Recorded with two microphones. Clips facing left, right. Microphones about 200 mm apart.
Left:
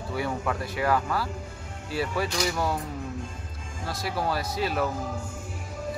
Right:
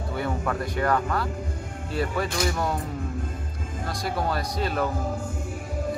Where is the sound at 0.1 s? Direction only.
5° left (ahead or behind).